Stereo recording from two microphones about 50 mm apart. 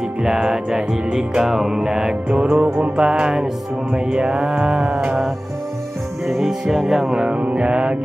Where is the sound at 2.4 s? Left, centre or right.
Right.